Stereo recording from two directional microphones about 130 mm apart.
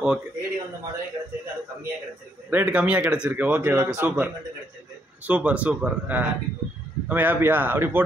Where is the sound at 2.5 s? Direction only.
10° right (ahead or behind).